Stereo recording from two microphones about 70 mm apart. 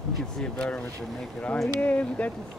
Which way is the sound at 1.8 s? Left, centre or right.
Left.